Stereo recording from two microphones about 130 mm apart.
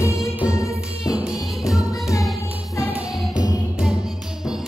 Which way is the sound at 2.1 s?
25° left (ahead or behind).